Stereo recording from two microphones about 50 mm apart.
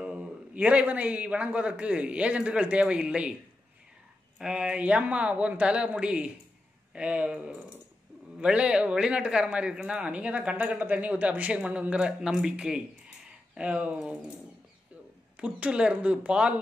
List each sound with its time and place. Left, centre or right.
0.0 s a man's voice: centre
4.4 s a man's voice: centre
12.1 s a man's voice: centre; by 13.9 s right
15.3 s a man's voice: right